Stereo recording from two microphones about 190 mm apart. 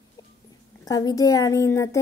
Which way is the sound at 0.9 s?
20° left (ahead or behind).